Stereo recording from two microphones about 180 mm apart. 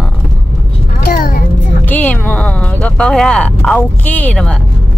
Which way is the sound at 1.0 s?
55° left (ahead or behind).